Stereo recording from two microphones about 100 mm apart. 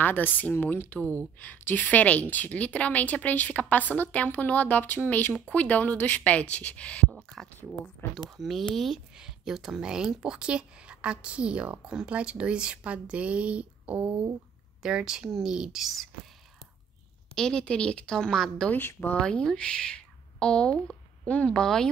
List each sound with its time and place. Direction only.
0.0 s a woman's voice: 20° left (ahead or behind)
7.1 s speech: centre (ahead or behind)
17.4 s a woman's voice: 10° left (ahead or behind)
18.7 s speech: 20° left (ahead or behind)